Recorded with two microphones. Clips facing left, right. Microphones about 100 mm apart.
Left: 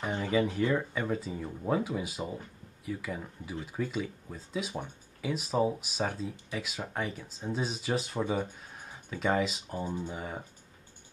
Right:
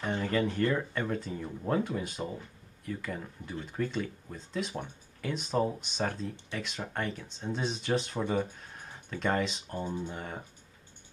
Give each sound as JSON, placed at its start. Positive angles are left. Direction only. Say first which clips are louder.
{"t": 0.0, "sound": "speech", "louder": "left 1 dB", "side_deg": 5}